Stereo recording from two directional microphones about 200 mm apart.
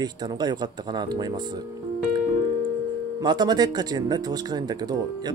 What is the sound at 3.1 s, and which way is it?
Speech, 20° right (ahead or behind).